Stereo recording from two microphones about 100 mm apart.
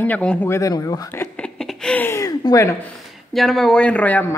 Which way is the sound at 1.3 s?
5° left (ahead or behind).